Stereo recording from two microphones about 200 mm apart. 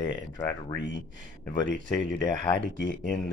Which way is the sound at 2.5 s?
60° left (ahead or behind).